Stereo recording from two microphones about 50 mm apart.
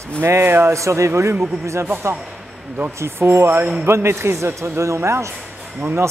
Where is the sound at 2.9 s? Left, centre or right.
Right.